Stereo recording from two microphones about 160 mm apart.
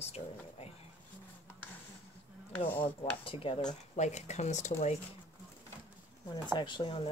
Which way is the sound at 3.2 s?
35° left (ahead or behind).